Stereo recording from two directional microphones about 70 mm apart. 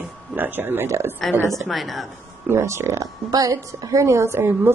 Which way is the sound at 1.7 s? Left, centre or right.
Centre.